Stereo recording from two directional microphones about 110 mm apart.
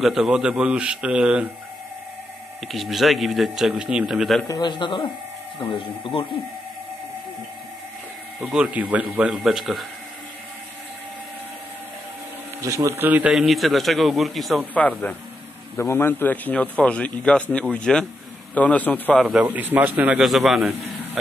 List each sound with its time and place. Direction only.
0.0 s speech: 5° right (ahead or behind)
2.7 s a man's voice: centre (ahead or behind)
4.5 s a man's voice: 40° left (ahead or behind)
8.4 s a man's voice: 10° right (ahead or behind)
12.6 s speech: 30° right (ahead or behind)
13.3 s a man's voice: centre (ahead or behind)
14.7 s a man's voice: 15° left (ahead or behind)
19.1 s a man's voice: 5° right (ahead or behind)
19.4 s speech: 15° right (ahead or behind)
20.2 s a man's voice: centre (ahead or behind)